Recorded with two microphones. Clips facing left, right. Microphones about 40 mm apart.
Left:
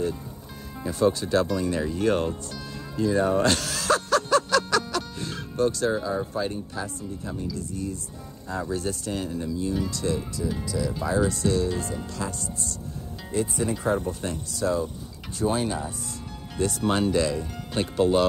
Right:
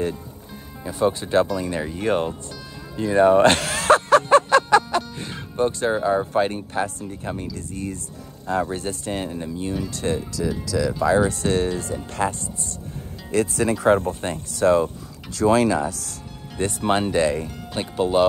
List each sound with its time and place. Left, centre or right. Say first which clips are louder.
1.0 s speech: right 3 dB; right
3.0 s a sound: right 7 dB; right
4.9 s speech: right 5 dB; right
10.6 s speech: right 6 dB; right
11.2 s speech: right 3 dB; right
13.3 s speech: right 6 dB; right
15.3 s speech: right 8 dB; right
16.5 s speech: right 3 dB; right
17.5 s speech: even; centre